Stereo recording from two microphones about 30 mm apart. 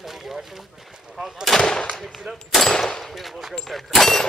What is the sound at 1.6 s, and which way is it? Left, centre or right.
Gunshot, left.